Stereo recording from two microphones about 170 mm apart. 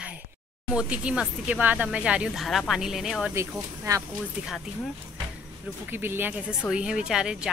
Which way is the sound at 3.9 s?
20° right (ahead or behind).